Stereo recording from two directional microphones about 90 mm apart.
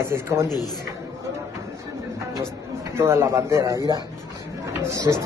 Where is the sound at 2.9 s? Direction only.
30° right (ahead or behind).